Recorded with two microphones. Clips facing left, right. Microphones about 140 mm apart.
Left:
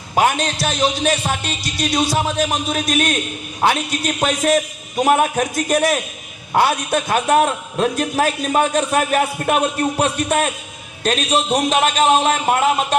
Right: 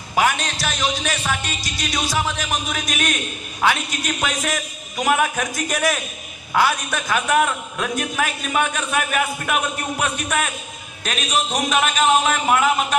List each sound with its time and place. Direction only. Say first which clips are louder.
0.1 s a man's voice: left 3 dB; 35° left (ahead or behind)
2.9 s a man's voice: left 6 dB; 50° left (ahead or behind)
3.6 s a man's voice: left 3 dB; 30° left (ahead or behind)